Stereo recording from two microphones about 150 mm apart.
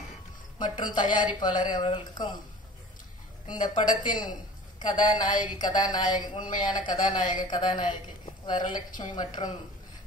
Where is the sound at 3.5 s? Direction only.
30° left (ahead or behind).